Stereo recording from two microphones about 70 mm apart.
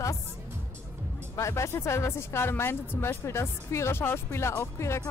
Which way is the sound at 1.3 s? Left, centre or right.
Left.